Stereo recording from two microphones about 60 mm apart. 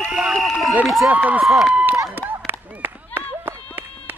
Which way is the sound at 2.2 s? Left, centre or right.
Right.